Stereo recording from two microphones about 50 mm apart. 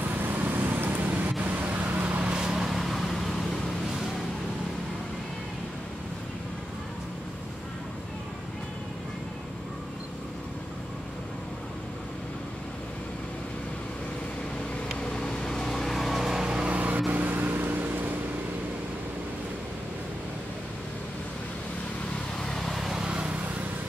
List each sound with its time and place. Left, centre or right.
0.1 s vehicle: right; by 3.3 s centre
14.9 s vehicle: centre
16.4 s vehicle: right
22.4 s vehicle: centre
22.7 s vehicle: centre
22.9 s vehicle: right